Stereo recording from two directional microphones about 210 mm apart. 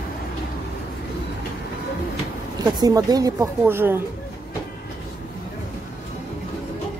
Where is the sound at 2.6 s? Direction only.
20° right (ahead or behind).